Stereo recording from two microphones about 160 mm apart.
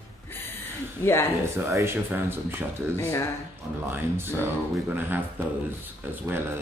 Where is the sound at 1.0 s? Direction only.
15° left (ahead or behind).